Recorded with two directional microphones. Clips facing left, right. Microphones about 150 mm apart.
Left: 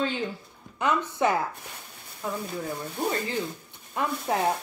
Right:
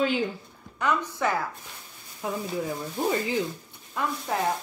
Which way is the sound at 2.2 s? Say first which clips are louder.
Right 1 dB; 15° right (ahead or behind).